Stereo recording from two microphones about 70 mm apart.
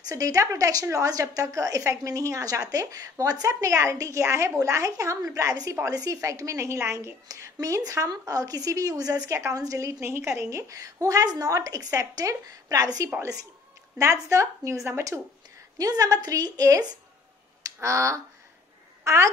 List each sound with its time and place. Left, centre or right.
0.1 s speech: right
8.1 s a woman's voice: right
9.3 s a woman's voice: right
13.9 s speech: right
15.1 s a woman's voice: right
15.8 s a woman's voice: right
17.7 s speech: right